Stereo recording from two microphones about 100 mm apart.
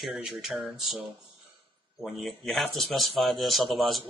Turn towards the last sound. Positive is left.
turn(degrees=0)  # may be behind; listen again after turning